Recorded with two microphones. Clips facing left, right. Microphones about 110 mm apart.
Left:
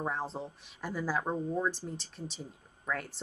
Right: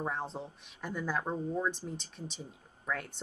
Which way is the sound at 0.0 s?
Centre (ahead or behind).